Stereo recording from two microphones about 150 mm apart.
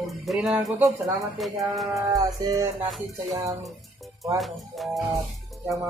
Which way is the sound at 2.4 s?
25° right (ahead or behind).